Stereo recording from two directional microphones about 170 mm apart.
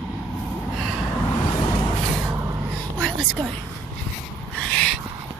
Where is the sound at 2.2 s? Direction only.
15° right (ahead or behind).